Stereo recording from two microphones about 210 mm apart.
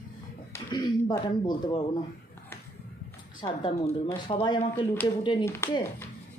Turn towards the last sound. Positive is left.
turn(degrees=10)  # may be behind; listen again after turning